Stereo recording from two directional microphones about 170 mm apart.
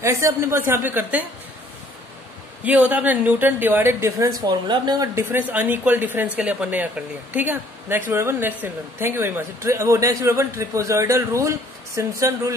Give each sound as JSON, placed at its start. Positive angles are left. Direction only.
{"t": 0.0, "sound": "speech", "side_deg": -15}
{"t": 2.6, "sound": "speech", "side_deg": -10}
{"t": 4.4, "sound": "speech", "side_deg": -25}